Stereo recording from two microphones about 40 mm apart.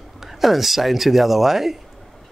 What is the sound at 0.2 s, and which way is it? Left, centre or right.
A man's voice, centre.